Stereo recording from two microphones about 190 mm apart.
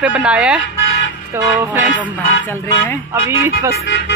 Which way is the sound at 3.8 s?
70° left (ahead or behind).